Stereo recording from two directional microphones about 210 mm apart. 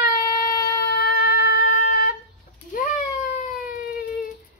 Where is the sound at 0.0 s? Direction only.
45° left (ahead or behind).